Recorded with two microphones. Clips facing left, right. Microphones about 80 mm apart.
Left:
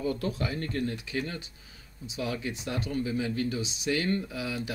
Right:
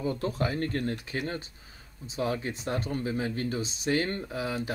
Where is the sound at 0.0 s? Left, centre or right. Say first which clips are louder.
Even; right.